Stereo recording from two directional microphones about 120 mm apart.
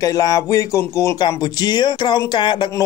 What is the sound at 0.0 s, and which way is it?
Speech, 30° left (ahead or behind).